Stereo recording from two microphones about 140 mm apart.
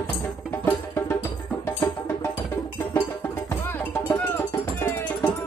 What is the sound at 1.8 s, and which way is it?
Music, 30° left (ahead or behind).